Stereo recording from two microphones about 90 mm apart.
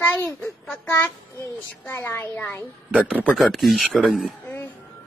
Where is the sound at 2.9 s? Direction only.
10° right (ahead or behind).